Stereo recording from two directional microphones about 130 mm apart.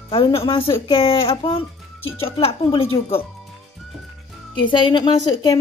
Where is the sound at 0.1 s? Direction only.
45° left (ahead or behind).